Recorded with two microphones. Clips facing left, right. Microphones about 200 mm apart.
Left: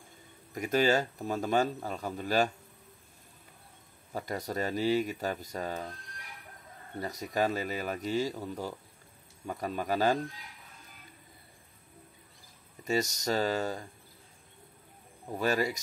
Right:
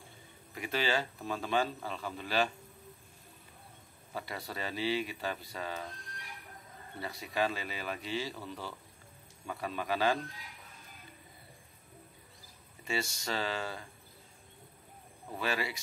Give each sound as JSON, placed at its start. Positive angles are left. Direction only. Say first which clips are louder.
{"t": 0.6, "sound": "speech", "louder": "left 6 dB", "side_deg": 45}
{"t": 4.1, "sound": "speech", "louder": "left 6 dB", "side_deg": 45}
{"t": 7.0, "sound": "speech", "louder": "left 3 dB", "side_deg": 40}
{"t": 12.8, "sound": "speech", "louder": "left 6 dB", "side_deg": 40}
{"t": 15.3, "sound": "speech", "louder": "left 6 dB", "side_deg": 40}